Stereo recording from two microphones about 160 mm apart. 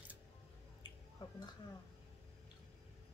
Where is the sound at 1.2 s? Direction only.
30° left (ahead or behind).